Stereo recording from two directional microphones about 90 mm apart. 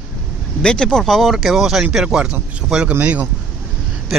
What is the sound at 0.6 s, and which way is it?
Speech, 10° left (ahead or behind).